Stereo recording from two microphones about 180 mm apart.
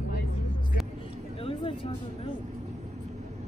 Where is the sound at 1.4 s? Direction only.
30° left (ahead or behind).